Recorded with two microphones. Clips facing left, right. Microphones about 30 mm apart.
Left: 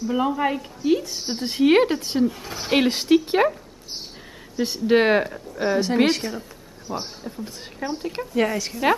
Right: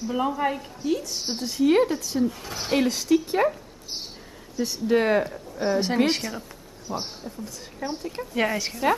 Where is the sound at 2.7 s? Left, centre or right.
Left.